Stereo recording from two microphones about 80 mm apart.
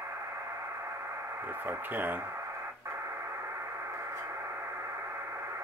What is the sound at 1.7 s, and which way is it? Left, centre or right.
Speech, right.